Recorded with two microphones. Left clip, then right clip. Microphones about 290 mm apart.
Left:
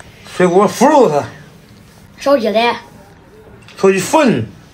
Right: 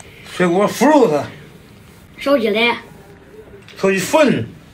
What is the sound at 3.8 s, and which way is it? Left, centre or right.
Speech, left.